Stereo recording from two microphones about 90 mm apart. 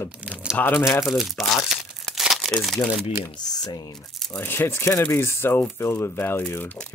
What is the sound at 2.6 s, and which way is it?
Speech, 5° left (ahead or behind).